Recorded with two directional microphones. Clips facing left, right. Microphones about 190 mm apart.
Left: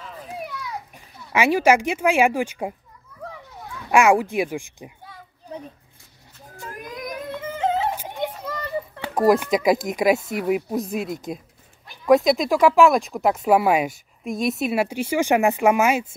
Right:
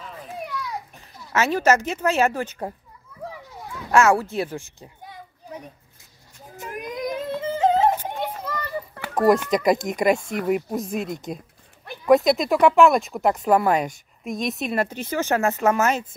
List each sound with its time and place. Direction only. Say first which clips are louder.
0.9 s speech: left 1 dB; 10° left (ahead or behind)
3.9 s speech: left 1 dB; 15° left (ahead or behind)
6.5 s yodeling: right 4 dB; 20° right (ahead or behind); by 7.9 s 40° right (ahead or behind)
9.1 s a sound: even; centre (ahead or behind)
9.5 s speech: left 1 dB; centre (ahead or behind)